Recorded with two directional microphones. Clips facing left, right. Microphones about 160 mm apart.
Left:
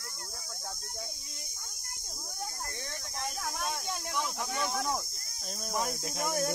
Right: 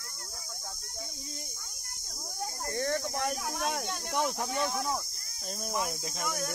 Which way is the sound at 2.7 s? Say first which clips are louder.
Right 12 dB; 60° right (ahead or behind).